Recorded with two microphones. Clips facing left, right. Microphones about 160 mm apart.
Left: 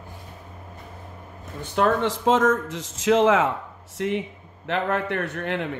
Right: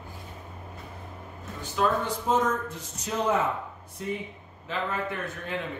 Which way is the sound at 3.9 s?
80° left.